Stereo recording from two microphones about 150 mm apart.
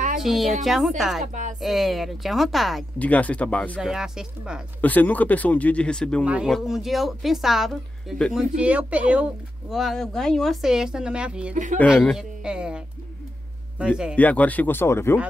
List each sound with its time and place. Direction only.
0.2 s speech: centre (ahead or behind)
1.2 s speech: 55° right (ahead or behind)
1.6 s speech: centre (ahead or behind)
3.0 s speech: 10° left (ahead or behind)
3.8 s speech: 5° right (ahead or behind)
4.8 s speech: 10° left (ahead or behind)
6.2 s speech: 10° right (ahead or behind)
11.5 s speech: 55° right (ahead or behind)
11.9 s speech: centre (ahead or behind)
14.1 s speech: 10° left (ahead or behind)